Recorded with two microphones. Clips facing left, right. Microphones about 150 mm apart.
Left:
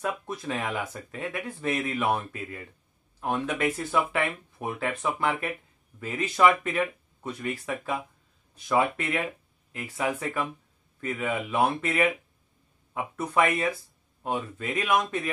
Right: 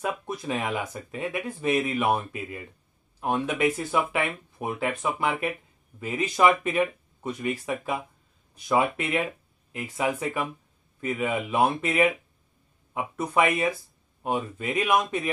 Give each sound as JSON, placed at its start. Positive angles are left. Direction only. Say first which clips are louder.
{"t": 0.0, "sound": "speech", "louder": "right 1 dB", "side_deg": -15}